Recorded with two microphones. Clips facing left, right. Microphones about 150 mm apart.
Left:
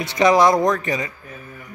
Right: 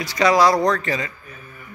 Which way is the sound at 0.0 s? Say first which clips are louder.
Left 1 dB; 20° left (ahead or behind).